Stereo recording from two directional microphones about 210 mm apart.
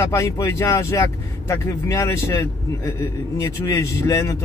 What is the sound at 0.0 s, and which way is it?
A man's voice, 15° left (ahead or behind).